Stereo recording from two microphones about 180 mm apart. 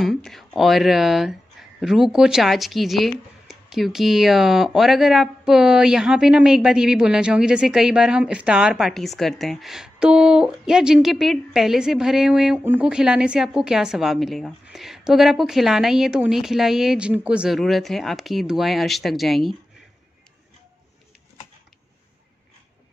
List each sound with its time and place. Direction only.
0.0 s speech: centre (ahead or behind)